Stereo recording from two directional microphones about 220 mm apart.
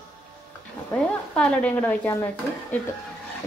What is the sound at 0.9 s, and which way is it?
Speech, 5° left (ahead or behind).